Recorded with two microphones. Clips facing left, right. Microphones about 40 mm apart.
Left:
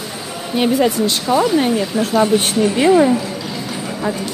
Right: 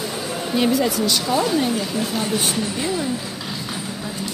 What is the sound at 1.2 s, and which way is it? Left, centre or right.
Speech, centre.